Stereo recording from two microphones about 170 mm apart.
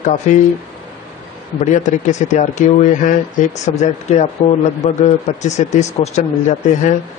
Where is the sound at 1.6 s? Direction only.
45° left (ahead or behind).